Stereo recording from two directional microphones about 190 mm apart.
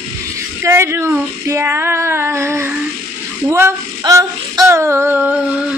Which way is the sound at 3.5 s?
15° right (ahead or behind).